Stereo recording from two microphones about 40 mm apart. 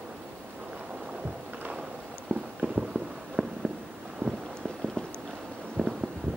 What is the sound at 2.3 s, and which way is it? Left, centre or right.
Clip-clop, left.